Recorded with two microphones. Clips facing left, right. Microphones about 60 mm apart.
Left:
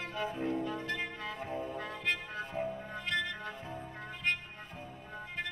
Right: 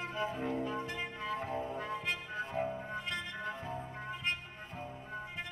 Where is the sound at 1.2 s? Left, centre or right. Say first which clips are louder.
Right 2 dB; right.